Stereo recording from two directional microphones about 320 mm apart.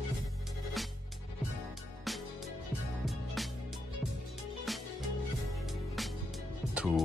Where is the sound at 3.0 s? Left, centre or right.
Centre.